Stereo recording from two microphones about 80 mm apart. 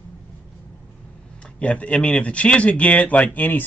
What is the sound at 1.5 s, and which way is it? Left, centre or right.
Speech, centre.